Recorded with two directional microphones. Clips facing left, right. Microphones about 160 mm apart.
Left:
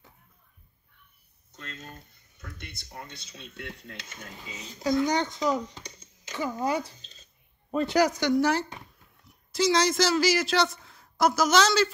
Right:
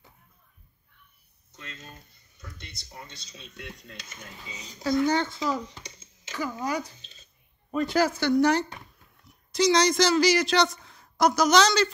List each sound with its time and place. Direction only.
1.6 s a sound: 50° left (ahead or behind)
2.4 s speech: 55° left (ahead or behind)
4.8 s speech: 15° left (ahead or behind)
6.6 s speech: 25° left (ahead or behind); by 11.9 s 5° left (ahead or behind)